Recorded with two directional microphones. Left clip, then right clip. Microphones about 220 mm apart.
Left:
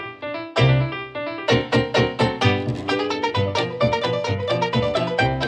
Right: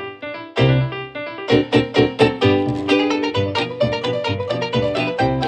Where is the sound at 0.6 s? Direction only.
Centre (ahead or behind).